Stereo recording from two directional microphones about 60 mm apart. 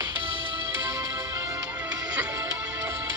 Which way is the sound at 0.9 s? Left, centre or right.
Right.